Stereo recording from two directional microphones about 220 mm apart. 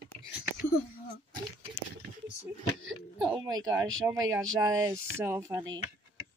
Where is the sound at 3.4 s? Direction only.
15° right (ahead or behind).